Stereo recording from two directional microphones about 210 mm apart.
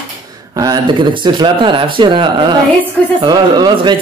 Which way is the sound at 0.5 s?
20° right (ahead or behind).